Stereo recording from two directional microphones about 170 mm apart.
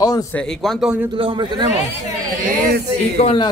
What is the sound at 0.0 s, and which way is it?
Speech, 25° left (ahead or behind).